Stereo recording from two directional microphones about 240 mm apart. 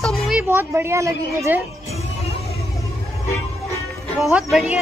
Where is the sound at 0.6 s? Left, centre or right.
Centre.